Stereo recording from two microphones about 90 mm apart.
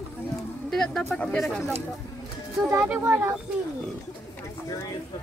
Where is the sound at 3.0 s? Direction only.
30° right (ahead or behind).